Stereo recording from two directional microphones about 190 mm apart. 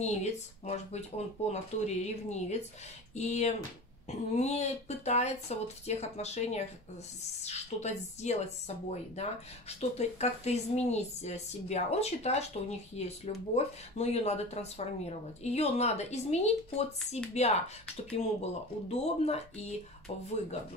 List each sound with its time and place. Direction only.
0.0 s speech: 35° left (ahead or behind)